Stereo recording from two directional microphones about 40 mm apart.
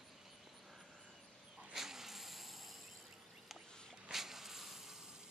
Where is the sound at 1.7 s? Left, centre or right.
Centre.